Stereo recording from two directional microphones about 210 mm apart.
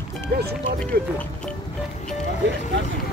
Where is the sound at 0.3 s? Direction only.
45° right (ahead or behind).